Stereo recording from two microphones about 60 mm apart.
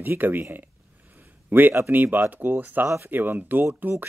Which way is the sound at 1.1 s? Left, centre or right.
Right.